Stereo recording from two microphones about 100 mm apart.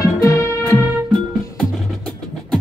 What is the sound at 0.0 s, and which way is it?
Music, 35° left (ahead or behind).